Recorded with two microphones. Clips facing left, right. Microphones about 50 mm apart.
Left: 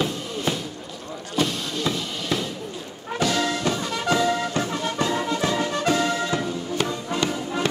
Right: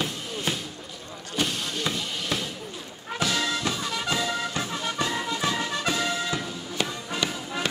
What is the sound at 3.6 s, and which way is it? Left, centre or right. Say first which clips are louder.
Music: left 4 dB; left.